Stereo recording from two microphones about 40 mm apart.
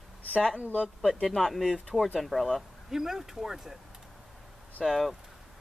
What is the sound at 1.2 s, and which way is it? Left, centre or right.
Speech, centre.